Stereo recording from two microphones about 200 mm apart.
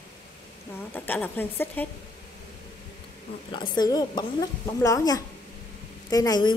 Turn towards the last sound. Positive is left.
turn(degrees=20)  # may be behind; listen again after turning